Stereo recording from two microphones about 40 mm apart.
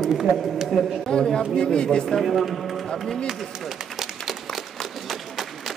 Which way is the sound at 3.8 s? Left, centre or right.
Centre.